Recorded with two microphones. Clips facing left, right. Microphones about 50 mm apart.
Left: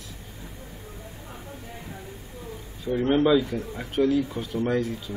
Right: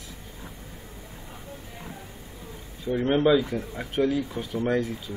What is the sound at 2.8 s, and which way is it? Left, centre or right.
Speech, centre.